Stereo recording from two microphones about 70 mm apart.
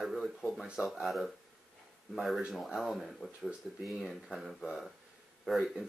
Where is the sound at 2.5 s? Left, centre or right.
Centre.